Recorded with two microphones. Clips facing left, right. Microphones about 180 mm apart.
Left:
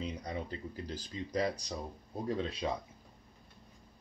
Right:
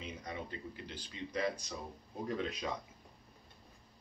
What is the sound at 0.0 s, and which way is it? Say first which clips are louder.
Speech: left 5 dB; 35° left (ahead or behind).